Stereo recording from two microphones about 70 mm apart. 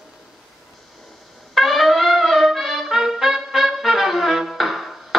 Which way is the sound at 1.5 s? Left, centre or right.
Centre.